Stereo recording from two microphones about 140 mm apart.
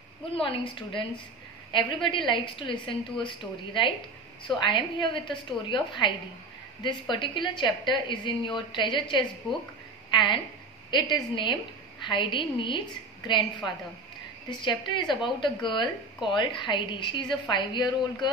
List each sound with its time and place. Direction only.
0.3 s a woman's voice: 40° left (ahead or behind)
14.5 s a woman's voice: 35° left (ahead or behind)